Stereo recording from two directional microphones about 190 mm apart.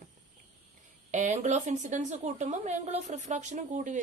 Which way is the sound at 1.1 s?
40° right (ahead or behind).